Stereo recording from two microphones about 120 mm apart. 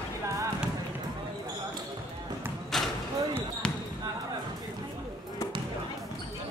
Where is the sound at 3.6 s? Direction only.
10° left (ahead or behind).